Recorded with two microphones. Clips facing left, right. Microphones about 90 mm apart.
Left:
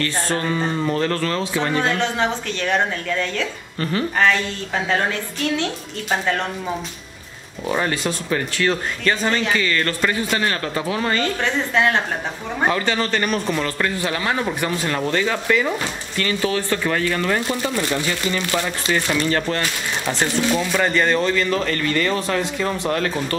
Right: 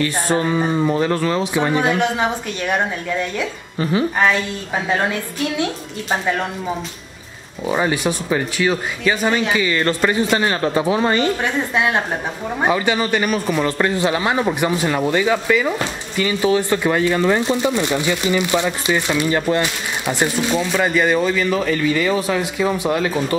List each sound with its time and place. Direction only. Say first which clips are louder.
0.0 s speech: right 4 dB; 15° right (ahead or behind)
7.6 s speech: right 3 dB; 15° right (ahead or behind)
13.7 s speech: right 5 dB; 20° right (ahead or behind)